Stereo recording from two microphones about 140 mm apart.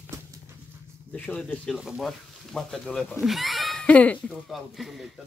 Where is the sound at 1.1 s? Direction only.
10° left (ahead or behind).